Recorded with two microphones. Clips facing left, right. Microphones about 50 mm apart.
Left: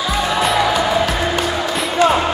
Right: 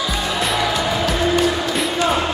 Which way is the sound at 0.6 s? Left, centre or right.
Centre.